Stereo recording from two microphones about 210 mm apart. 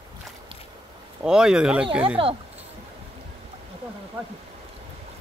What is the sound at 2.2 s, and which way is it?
Speech, 25° right (ahead or behind).